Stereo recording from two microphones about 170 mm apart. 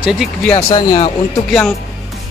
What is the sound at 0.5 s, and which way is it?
Speech, 30° left (ahead or behind).